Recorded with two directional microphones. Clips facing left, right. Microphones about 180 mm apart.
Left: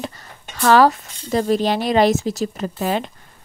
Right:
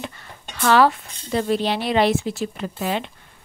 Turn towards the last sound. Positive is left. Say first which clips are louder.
# left 3 dB
turn(degrees=40)  # may be behind; listen again after turning